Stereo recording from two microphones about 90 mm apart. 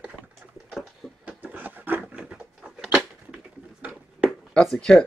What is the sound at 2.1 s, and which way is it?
Bird, 10° right (ahead or behind).